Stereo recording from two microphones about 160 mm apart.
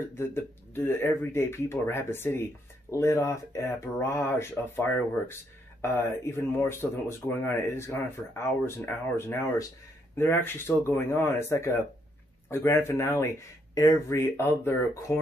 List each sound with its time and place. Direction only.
0.1 s speech: 15° left (ahead or behind)